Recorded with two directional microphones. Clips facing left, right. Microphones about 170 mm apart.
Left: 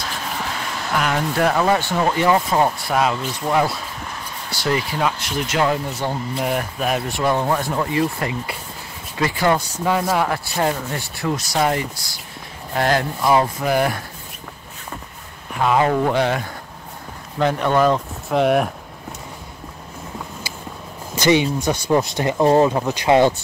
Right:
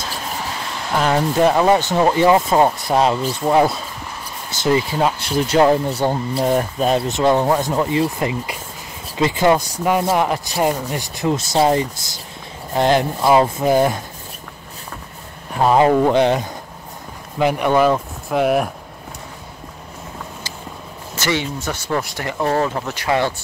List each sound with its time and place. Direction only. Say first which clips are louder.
0.9 s speech: right 4 dB; 30° right (ahead or behind)
15.5 s speech: right 4 dB; 30° right (ahead or behind)
15.9 s speech: right 4 dB; 20° right (ahead or behind); by 18.7 s centre (ahead or behind)
21.1 s speech: left 5 dB; 15° left (ahead or behind)